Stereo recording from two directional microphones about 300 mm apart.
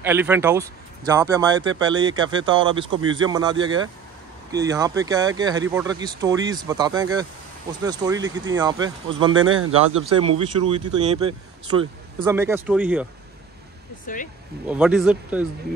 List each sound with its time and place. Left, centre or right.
0.0 s speech: centre
2.9 s a man's voice: right
3.2 s speech: centre
9.4 s a man's voice: right
10.0 s speech: centre
14.0 s speech: left
14.7 s speech: centre